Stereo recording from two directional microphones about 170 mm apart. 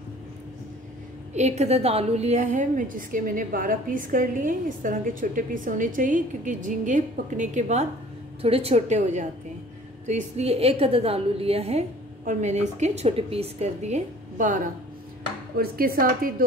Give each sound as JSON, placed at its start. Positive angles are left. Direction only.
{"t": 1.3, "sound": "a woman's voice", "side_deg": -40}
{"t": 15.5, "sound": "speech", "side_deg": -60}